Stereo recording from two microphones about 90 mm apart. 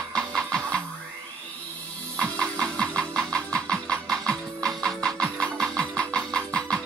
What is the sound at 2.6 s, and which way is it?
Music, 10° left (ahead or behind).